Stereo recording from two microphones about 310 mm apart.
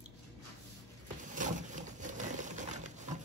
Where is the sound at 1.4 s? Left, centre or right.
Right.